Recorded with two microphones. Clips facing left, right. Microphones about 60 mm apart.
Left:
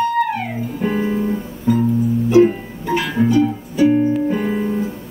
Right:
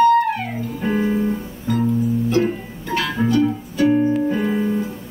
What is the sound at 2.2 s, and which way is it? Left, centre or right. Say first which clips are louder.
Music: left 7 dB; centre.